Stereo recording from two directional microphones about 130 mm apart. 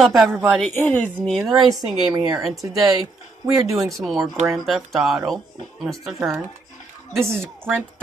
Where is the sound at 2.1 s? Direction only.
30° right (ahead or behind).